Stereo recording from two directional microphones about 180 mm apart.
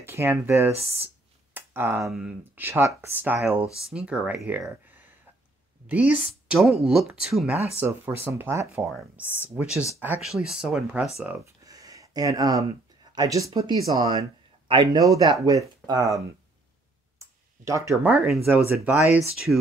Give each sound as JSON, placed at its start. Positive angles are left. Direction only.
{"t": 0.0, "sound": "speech", "side_deg": -10}
{"t": 0.7, "sound": "speech", "side_deg": -35}
{"t": 1.5, "sound": "a sound", "side_deg": -15}
{"t": 2.1, "sound": "speech", "side_deg": -5}
{"t": 9.2, "sound": "speech", "side_deg": 10}
{"t": 9.5, "sound": "speech", "side_deg": -10}
{"t": 11.6, "sound": "a sound", "side_deg": -20}
{"t": 13.1, "sound": "speech", "side_deg": -20}
{"t": 17.2, "sound": "a sound", "side_deg": -15}
{"t": 18.1, "sound": "speech", "side_deg": 0}